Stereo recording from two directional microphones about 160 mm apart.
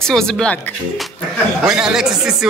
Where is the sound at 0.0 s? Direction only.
5° left (ahead or behind).